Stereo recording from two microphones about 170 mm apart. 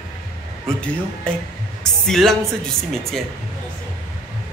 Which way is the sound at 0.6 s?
5° left (ahead or behind).